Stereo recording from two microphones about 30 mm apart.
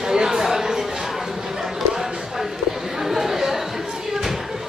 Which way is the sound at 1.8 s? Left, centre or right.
Centre.